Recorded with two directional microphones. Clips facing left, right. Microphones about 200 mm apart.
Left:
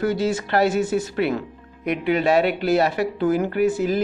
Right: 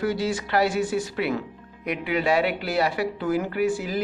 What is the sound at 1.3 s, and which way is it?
Music, 50° left (ahead or behind).